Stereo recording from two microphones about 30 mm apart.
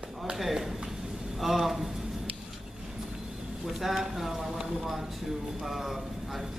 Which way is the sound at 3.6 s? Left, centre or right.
Centre.